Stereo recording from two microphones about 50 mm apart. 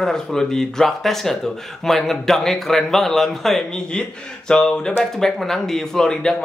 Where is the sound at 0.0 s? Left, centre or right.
Centre.